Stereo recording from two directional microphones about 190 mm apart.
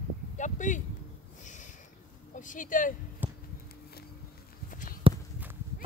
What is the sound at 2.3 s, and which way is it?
Speech, 45° left (ahead or behind).